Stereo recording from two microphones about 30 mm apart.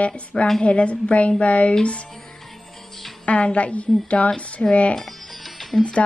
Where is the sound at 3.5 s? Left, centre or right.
Left.